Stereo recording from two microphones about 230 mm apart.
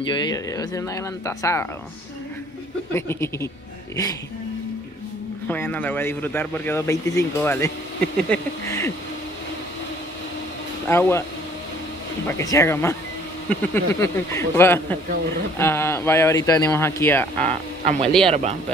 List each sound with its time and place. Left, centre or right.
0.1 s speech: centre
2.9 s speech: centre
5.5 s speech: centre
10.9 s speech: centre
12.3 s speech: centre
17.5 s speech: right
18.0 s speech: centre
18.3 s speech: right